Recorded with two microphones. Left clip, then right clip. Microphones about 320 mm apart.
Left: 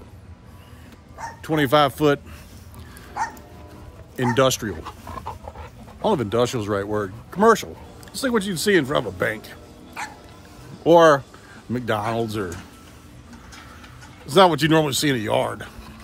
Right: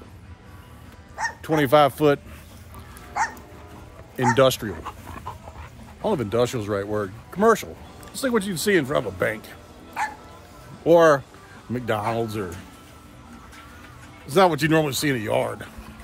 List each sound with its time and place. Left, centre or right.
1.1 s speech: centre
3.2 s dog: right
4.2 s speech: centre
6.0 s speech: centre
10.0 s dog: right
10.8 s speech: centre
14.2 s speech: centre